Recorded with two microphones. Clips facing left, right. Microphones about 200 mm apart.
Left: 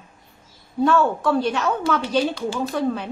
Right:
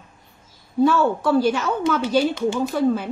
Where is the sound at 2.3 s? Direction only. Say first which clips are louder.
Right 3 dB; 20° right (ahead or behind).